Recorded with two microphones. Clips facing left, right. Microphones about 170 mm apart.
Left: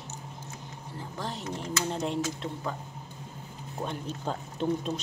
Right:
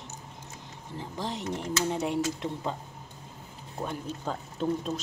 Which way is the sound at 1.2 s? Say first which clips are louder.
Right 2 dB; 20° right (ahead or behind).